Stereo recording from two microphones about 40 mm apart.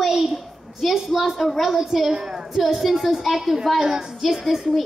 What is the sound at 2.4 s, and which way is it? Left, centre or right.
A child's voice, centre.